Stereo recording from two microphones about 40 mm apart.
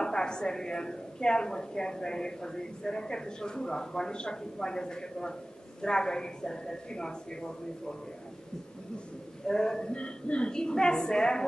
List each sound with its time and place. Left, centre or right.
0.0 s a woman's voice: centre
9.5 s a woman's voice: centre
9.9 s a woman's voice: left